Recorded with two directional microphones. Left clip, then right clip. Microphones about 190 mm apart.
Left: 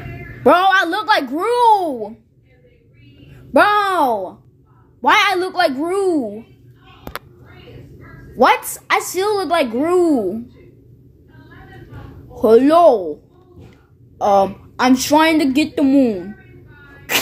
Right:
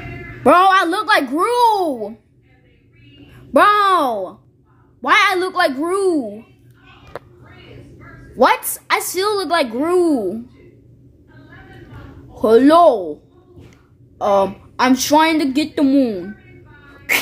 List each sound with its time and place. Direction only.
0.4 s a sound: 10° right (ahead or behind)
1.3 s a woman's voice: 15° right (ahead or behind)
3.3 s a child's voice: 15° right (ahead or behind)
8.4 s a woman's voice: 5° right (ahead or behind)
12.4 s speech: 5° right (ahead or behind)
14.1 s a woman's voice: centre (ahead or behind)